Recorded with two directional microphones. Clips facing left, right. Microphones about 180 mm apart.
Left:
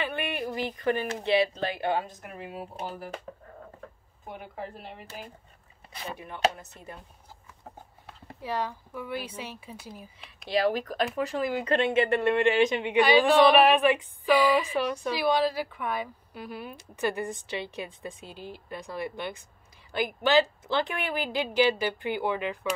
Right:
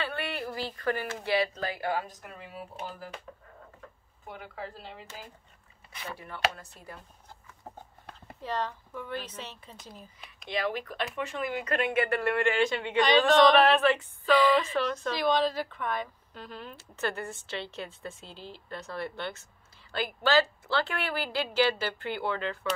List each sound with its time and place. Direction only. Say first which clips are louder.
0.0 s speech: left 3 dB; 15° left (ahead or behind)
3.3 s a sound: left 5 dB; 35° left (ahead or behind)
4.3 s speech: left 2 dB; 15° left (ahead or behind)
6.0 s speech: left 4 dB; 20° left (ahead or behind)
8.1 s speech: left 2 dB; 5° left (ahead or behind)
10.5 s speech: left 6 dB; 35° left (ahead or behind); by 22.8 s 15° left (ahead or behind)